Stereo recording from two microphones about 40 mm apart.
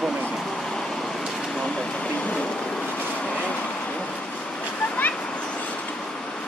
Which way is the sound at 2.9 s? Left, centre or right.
Left.